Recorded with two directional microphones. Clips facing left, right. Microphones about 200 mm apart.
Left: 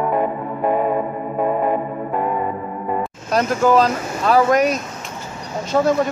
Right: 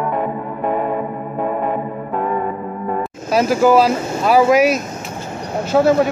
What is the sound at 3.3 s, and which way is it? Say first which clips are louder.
Speech: right 3 dB; 5° right (ahead or behind).